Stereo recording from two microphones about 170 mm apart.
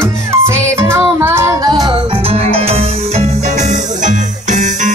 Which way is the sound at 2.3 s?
35° right (ahead or behind).